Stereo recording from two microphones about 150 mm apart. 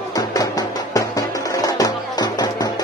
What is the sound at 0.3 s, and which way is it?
Music, 25° left (ahead or behind).